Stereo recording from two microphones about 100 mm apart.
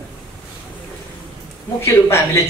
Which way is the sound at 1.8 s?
25° left (ahead or behind).